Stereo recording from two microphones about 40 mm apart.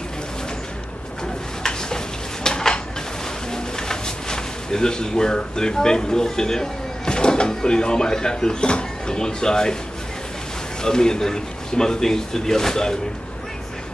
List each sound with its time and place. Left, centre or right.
1.6 s tick-tock: centre
2.4 s a sound: centre
3.5 s speech: centre
10.8 s speech: centre